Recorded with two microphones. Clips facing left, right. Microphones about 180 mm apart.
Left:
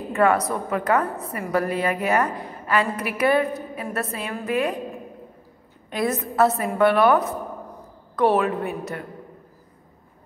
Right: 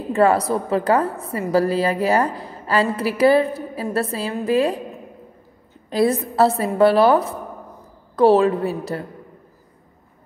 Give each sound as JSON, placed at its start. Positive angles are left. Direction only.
{"t": 0.1, "sound": "a woman's voice", "side_deg": -30}
{"t": 5.9, "sound": "a woman's voice", "side_deg": -30}